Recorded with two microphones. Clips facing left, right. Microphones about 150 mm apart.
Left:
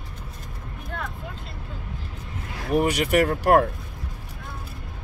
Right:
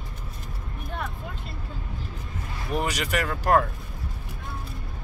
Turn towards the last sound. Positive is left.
turn(degrees=65)  # may be behind; listen again after turning